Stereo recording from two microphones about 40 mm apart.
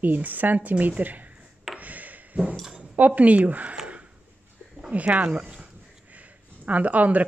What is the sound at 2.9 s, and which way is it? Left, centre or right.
Speech, right.